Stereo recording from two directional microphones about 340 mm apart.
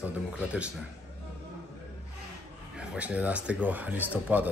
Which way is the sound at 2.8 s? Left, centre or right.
Centre.